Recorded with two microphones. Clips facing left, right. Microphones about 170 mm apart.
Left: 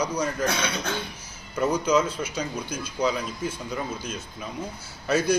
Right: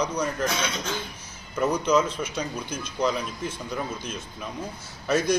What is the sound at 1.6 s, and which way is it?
A man's voice, 5° left (ahead or behind).